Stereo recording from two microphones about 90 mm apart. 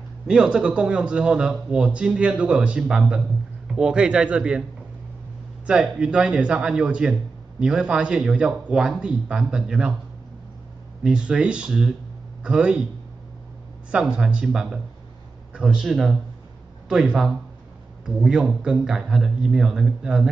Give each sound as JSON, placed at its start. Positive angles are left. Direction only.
{"t": 0.3, "sound": "a man's voice", "side_deg": -10}
{"t": 5.7, "sound": "a man's voice", "side_deg": -10}
{"t": 11.1, "sound": "a man's voice", "side_deg": -10}
{"t": 13.9, "sound": "a man's voice", "side_deg": -10}